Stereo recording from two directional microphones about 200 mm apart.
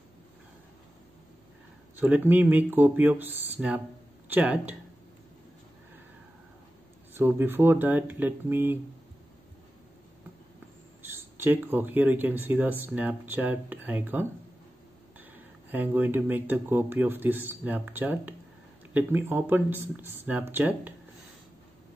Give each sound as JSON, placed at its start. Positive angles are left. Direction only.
{"t": 2.0, "sound": "speech", "side_deg": -10}
{"t": 7.2, "sound": "speech", "side_deg": -10}
{"t": 11.0, "sound": "speech", "side_deg": -10}
{"t": 15.7, "sound": "speech", "side_deg": -10}